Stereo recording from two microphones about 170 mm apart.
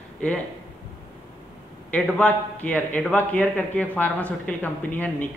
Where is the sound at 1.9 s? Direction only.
10° left (ahead or behind).